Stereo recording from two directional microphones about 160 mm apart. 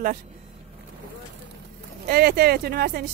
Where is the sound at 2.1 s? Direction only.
75° right (ahead or behind).